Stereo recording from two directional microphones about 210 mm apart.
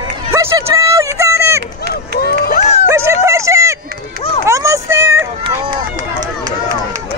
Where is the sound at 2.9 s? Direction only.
10° right (ahead or behind).